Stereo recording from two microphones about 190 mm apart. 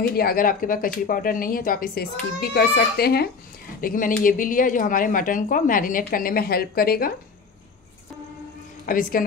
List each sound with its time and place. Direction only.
0.0 s speech: 55° left (ahead or behind)
8.8 s speech: 50° left (ahead or behind)